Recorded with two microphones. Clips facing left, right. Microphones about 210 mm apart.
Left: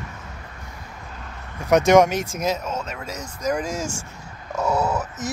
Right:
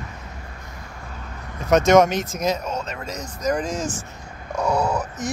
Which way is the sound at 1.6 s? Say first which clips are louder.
Even; 15° left (ahead or behind).